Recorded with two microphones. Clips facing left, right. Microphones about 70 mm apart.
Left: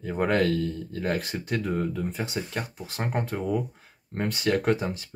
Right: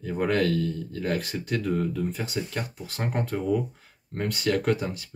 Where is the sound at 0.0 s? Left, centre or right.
Left.